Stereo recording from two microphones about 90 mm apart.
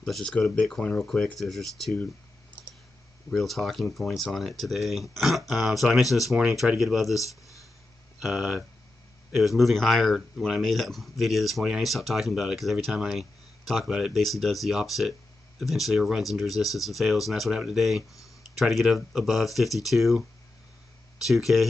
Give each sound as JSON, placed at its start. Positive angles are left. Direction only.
{"t": 0.0, "sound": "speech", "side_deg": 5}
{"t": 3.3, "sound": "speech", "side_deg": 0}
{"t": 7.2, "sound": "a sound", "side_deg": 40}
{"t": 8.2, "sound": "speech", "side_deg": -5}